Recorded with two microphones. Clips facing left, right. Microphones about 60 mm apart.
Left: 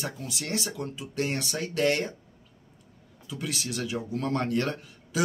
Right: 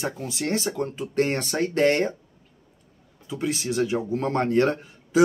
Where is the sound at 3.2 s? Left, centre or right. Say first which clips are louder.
Right 7 dB; right.